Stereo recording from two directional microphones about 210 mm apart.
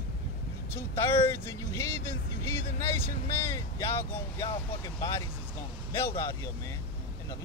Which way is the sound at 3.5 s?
15° left (ahead or behind).